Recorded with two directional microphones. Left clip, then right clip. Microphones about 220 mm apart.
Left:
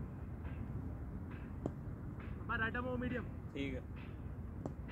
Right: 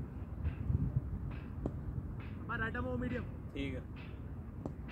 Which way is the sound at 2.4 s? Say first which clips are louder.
Even; 10° right (ahead or behind).